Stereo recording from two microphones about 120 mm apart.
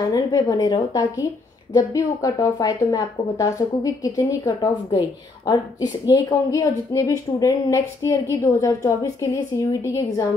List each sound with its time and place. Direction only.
0.1 s a woman's voice: 30° left (ahead or behind)